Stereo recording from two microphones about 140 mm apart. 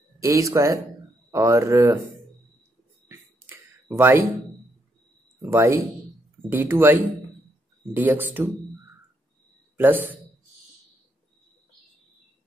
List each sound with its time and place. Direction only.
0.2 s speech: 20° right (ahead or behind)
3.1 s a sound: 15° right (ahead or behind)
5.4 s speech: 20° right (ahead or behind)
9.8 s speech: 15° right (ahead or behind)